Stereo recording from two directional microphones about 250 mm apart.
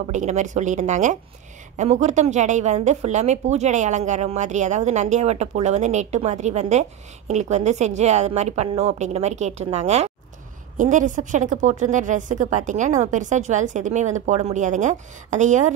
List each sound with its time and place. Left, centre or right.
0.1 s a woman's voice: right